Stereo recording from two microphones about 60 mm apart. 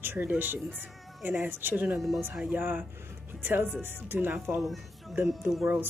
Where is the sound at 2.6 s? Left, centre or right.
Right.